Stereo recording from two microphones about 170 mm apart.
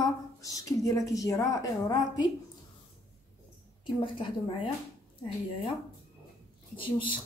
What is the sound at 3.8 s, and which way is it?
Speech, 30° left (ahead or behind).